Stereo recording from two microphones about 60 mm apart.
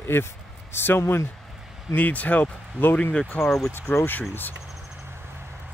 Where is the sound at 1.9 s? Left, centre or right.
Left.